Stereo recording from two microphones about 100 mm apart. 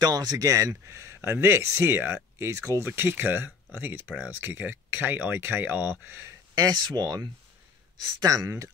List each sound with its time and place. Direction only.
0.0 s speech: 40° right (ahead or behind); by 6.3 s 20° right (ahead or behind)
6.5 s speech: 40° right (ahead or behind)